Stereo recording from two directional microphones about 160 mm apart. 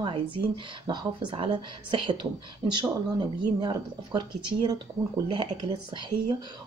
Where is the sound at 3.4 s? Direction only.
30° right (ahead or behind).